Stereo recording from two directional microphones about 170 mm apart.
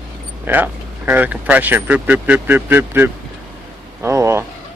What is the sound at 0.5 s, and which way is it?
Speech, 10° right (ahead or behind).